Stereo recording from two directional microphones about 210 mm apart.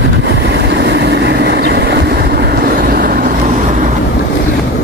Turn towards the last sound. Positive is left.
turn(degrees=-45)  # may be behind; listen again after turning